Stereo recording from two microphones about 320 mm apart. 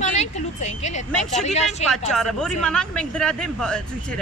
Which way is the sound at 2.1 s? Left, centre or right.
Centre.